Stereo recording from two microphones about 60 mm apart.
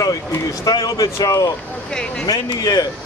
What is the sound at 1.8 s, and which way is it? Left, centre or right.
Speech, centre.